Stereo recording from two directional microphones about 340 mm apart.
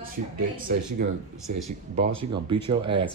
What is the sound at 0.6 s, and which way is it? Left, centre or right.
Speech, right.